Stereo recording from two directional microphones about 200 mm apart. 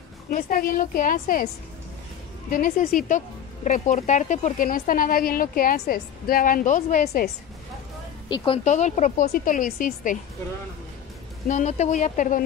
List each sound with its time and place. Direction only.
0.3 s speech: 45° left (ahead or behind)
2.5 s speech: 45° left (ahead or behind)
8.6 s a woman's voice: 35° left (ahead or behind)
11.4 s a woman's voice: 35° left (ahead or behind)